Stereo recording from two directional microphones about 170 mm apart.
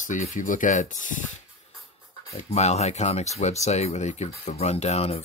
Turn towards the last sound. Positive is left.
turn(degrees=35)  # may be behind; listen again after turning